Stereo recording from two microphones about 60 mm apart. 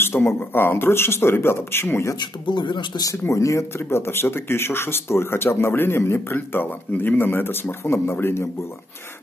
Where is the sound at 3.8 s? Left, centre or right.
Left.